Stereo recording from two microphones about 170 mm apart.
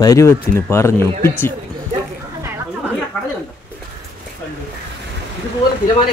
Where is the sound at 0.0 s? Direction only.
20° left (ahead or behind).